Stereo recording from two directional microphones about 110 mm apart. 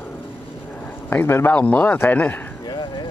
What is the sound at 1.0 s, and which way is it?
A man's voice, 20° left (ahead or behind).